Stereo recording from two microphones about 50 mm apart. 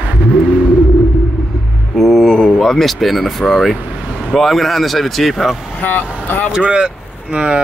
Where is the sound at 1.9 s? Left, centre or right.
Centre.